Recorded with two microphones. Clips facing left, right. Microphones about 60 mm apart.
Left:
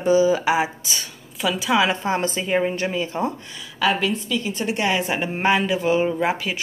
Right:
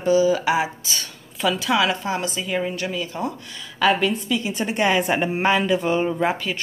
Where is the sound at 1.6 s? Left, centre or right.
Left.